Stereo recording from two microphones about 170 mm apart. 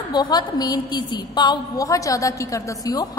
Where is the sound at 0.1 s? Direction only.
25° left (ahead or behind).